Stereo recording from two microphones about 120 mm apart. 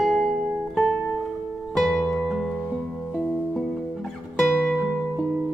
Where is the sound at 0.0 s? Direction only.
Centre (ahead or behind).